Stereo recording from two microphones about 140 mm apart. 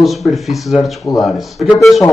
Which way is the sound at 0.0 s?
Centre (ahead or behind).